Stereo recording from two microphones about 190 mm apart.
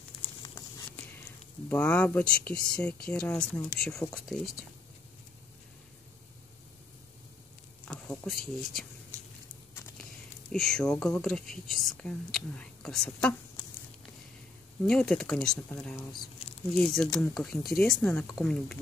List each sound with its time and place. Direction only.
1.7 s speech: 5° left (ahead or behind)
7.9 s speech: 5° left (ahead or behind)
10.5 s speech: 5° left (ahead or behind)
14.9 s speech: 5° left (ahead or behind)